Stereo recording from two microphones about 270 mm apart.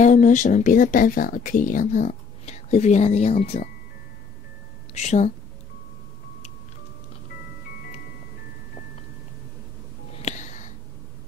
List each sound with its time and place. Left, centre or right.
0.0 s speech: left
4.9 s speech: left